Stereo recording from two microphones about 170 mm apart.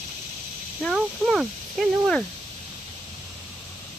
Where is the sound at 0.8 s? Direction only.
5° right (ahead or behind).